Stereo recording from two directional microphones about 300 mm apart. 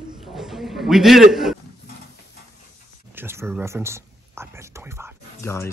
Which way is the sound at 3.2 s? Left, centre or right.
Centre.